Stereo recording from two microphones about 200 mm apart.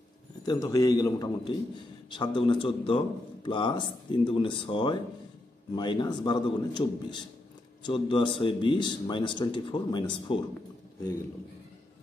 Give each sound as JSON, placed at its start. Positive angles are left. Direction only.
{"t": 0.5, "sound": "a man's voice", "side_deg": 15}